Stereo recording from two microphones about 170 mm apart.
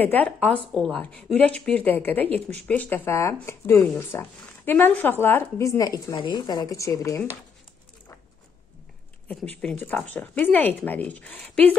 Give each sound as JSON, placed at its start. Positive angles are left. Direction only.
{"t": 0.0, "sound": "speech", "side_deg": 10}
{"t": 9.3, "sound": "speech", "side_deg": 5}